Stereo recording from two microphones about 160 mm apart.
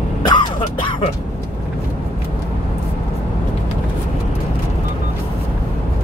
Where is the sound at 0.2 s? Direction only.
30° left (ahead or behind).